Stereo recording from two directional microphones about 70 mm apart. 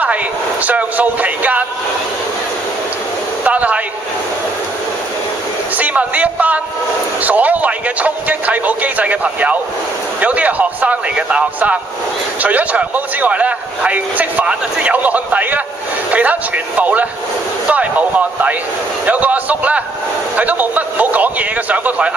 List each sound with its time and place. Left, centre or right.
0.0 s speech: right
3.4 s a sound: centre
5.8 s a man's voice: centre